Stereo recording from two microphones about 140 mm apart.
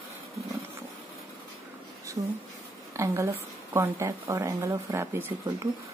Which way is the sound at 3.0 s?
20° right (ahead or behind).